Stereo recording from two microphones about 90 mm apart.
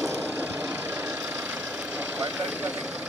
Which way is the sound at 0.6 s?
20° right (ahead or behind).